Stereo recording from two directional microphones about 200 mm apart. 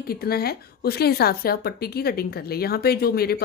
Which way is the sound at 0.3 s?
50° left (ahead or behind).